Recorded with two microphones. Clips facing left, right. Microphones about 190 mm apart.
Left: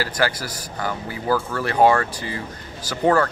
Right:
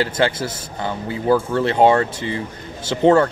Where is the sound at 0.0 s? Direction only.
25° right (ahead or behind).